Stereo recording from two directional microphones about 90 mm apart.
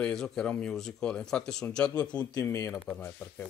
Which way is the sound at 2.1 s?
50° left (ahead or behind).